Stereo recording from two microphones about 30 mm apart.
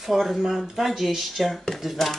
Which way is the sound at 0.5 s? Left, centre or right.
Centre.